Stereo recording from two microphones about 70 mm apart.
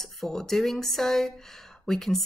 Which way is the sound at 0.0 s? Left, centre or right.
Centre.